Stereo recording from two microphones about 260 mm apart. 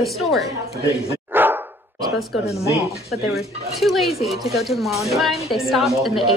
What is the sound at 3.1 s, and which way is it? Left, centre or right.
A woman's voice, centre.